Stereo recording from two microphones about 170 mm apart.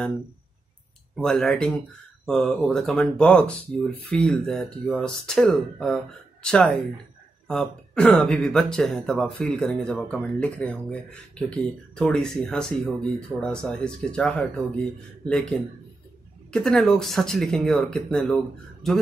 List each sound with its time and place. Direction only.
1.1 s speech: 5° left (ahead or behind)